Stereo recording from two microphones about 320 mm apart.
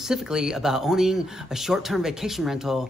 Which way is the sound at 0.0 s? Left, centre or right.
Centre.